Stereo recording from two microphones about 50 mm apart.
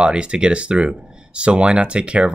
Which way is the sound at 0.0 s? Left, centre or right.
Centre.